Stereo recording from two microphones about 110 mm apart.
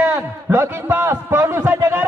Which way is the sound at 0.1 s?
25° right (ahead or behind).